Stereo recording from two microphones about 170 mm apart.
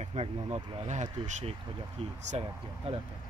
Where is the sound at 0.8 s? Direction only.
45° right (ahead or behind).